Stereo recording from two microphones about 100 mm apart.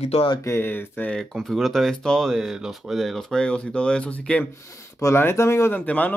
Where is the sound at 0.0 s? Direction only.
90° left.